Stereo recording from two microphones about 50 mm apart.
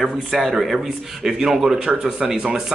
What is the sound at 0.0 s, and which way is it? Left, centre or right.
Speech, centre.